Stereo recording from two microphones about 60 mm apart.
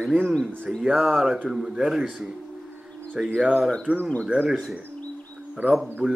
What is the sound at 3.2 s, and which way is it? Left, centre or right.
Speech, centre.